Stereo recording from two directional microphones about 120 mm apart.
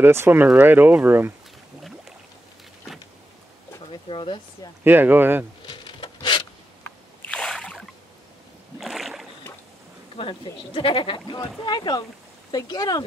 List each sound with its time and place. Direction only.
0.0 s speech: 20° right (ahead or behind)
1.8 s boat: centre (ahead or behind)
4.1 s speech: 45° left (ahead or behind)
4.8 s speech: 15° right (ahead or behind)
5.7 s a sound: 40° left (ahead or behind)
6.8 s boat: 15° left (ahead or behind)
8.7 s rowboat: centre (ahead or behind)
10.1 s speech: 50° left (ahead or behind); by 13.0 s 30° left (ahead or behind)